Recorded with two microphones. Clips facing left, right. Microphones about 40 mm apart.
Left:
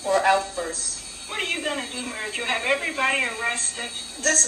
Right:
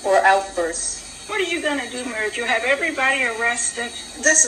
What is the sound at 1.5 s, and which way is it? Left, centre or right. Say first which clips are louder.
Speech: right 4 dB; centre.